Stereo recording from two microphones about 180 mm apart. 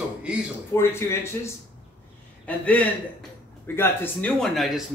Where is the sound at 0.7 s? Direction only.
15° left (ahead or behind).